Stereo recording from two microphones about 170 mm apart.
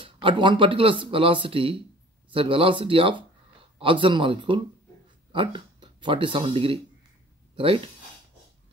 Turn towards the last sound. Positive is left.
turn(degrees=-30)  # may be behind; listen again after turning